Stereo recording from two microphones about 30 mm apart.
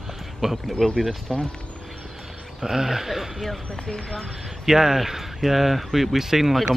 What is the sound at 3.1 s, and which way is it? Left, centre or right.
Speech, centre.